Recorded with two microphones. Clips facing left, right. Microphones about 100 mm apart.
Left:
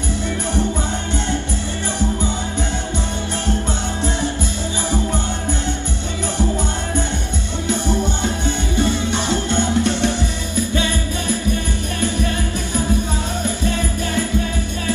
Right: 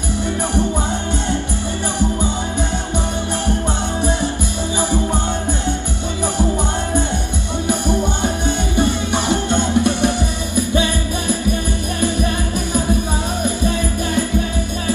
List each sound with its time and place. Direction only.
7.6 s music: 15° right (ahead or behind)
13.4 s music: 15° right (ahead or behind)